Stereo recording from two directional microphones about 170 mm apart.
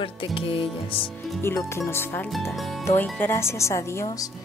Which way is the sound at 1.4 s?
15° left (ahead or behind).